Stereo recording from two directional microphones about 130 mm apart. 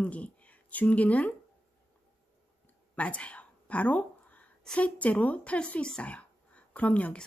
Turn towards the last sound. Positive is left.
turn(degrees=10)  # may be behind; listen again after turning